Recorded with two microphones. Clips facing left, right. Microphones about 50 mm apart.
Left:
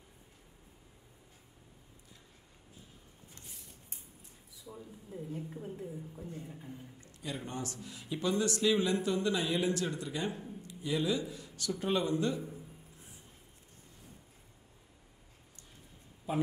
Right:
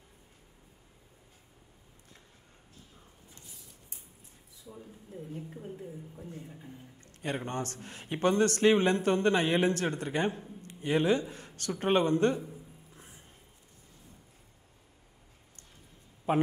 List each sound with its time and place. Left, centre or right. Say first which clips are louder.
4.7 s speech: even; centre
5.3 s a woman's voice: even; centre
7.0 s a man's voice: right 7 dB; right
16.3 s a man's voice: right 6 dB; right